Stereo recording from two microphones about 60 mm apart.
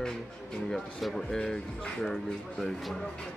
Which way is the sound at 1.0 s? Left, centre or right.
Centre.